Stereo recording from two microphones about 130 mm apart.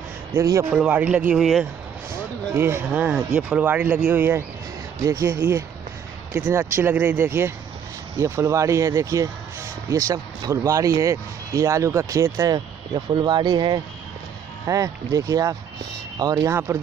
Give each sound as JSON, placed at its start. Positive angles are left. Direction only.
{"t": 0.3, "sound": "speech", "side_deg": -20}
{"t": 0.7, "sound": "speech", "side_deg": -10}
{"t": 2.5, "sound": "speech", "side_deg": -15}